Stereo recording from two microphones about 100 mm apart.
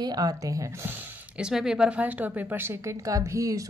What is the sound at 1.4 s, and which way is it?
A woman's voice, 5° right (ahead or behind).